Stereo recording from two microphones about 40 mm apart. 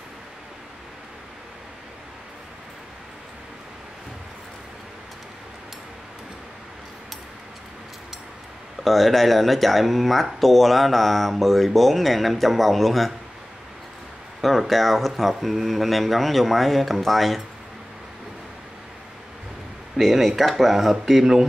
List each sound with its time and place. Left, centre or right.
8.8 s speech: centre
14.4 s speech: centre
20.0 s speech: centre